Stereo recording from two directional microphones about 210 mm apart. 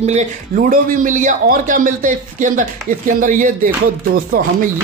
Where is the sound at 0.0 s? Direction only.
35° right (ahead or behind).